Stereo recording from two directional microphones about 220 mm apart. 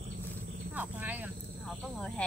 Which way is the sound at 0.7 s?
10° right (ahead or behind).